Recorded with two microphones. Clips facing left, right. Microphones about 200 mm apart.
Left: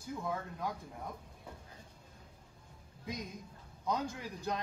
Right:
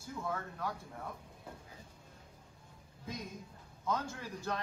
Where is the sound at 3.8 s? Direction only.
15° left (ahead or behind).